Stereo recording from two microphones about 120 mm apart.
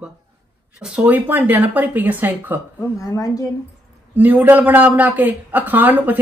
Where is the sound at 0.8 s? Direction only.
10° right (ahead or behind).